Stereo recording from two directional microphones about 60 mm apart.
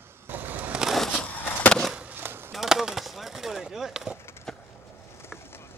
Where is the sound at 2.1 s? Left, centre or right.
Right.